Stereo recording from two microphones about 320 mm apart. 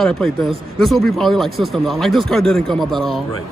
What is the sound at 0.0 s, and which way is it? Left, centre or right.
Speech, centre.